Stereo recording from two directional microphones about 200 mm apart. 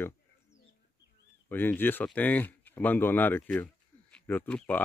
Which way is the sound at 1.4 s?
10° left (ahead or behind).